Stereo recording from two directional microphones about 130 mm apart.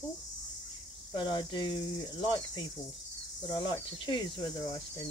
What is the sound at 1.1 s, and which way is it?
Speech, 40° left (ahead or behind).